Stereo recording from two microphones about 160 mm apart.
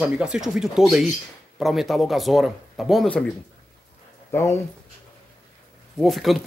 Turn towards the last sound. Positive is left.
turn(degrees=0)  # may be behind; listen again after turning